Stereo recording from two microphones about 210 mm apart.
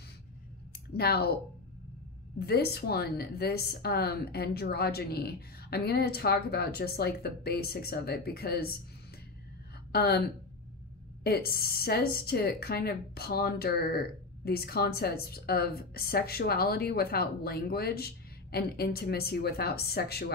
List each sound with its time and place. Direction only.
0.9 s a woman's voice: 50° left (ahead or behind)
2.4 s a woman's voice: 50° left (ahead or behind)
9.9 s a woman's voice: 50° left (ahead or behind)
11.2 s a woman's voice: 50° left (ahead or behind)